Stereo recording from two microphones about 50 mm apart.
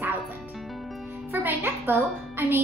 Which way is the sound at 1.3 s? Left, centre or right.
Right.